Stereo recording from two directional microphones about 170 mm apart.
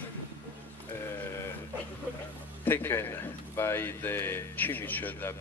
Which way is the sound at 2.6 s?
10° left (ahead or behind).